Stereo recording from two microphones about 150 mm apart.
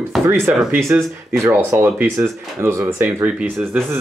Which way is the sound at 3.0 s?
10° right (ahead or behind).